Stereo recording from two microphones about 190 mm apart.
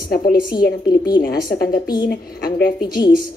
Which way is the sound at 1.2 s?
55° left (ahead or behind).